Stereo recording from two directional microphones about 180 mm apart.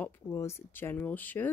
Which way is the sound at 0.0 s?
15° left (ahead or behind).